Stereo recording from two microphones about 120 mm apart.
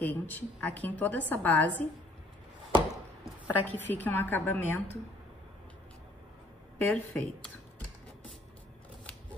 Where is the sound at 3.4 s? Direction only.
15° left (ahead or behind).